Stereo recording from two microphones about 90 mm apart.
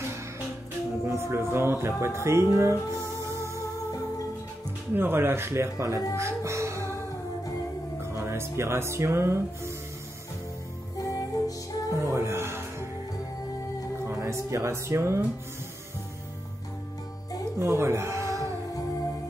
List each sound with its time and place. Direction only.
1.0 s music: 30° right (ahead or behind)
4.9 s music: 25° right (ahead or behind)
8.1 s speech: 30° right (ahead or behind)
11.0 s music: 40° left (ahead or behind)
11.9 s music: 30° right (ahead or behind)
14.0 s speech: 30° right (ahead or behind)
17.6 s cat: 30° right (ahead or behind)